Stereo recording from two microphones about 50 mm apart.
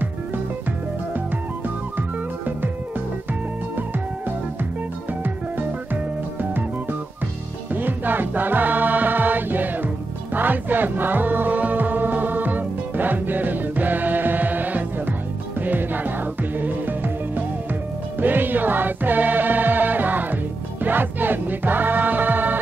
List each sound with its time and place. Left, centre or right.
2.0 s music: right
7.7 s music: right